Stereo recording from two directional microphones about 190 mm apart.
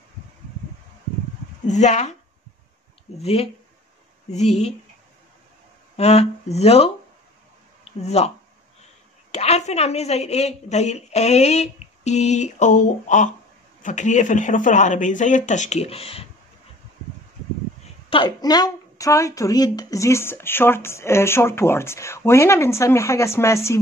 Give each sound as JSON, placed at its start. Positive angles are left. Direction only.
{"t": 1.7, "sound": "a woman's voice", "side_deg": 40}
{"t": 3.2, "sound": "a woman's voice", "side_deg": 30}
{"t": 5.9, "sound": "a woman's voice", "side_deg": 35}
{"t": 9.3, "sound": "a woman's voice", "side_deg": 35}
{"t": 18.1, "sound": "speech", "side_deg": 25}